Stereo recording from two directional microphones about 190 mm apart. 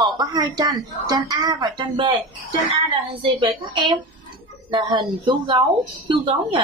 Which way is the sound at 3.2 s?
25° right (ahead or behind).